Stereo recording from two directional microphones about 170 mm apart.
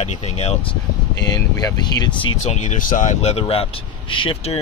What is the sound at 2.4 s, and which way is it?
Speech, 45° left (ahead or behind).